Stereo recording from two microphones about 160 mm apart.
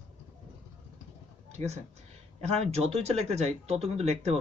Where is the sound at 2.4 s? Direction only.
40° right (ahead or behind).